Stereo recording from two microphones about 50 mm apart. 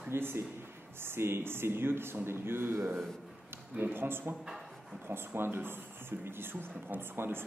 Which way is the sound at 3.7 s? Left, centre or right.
Right.